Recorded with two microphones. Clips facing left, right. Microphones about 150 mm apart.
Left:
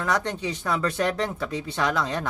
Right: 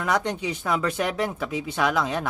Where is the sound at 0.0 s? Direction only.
15° right (ahead or behind).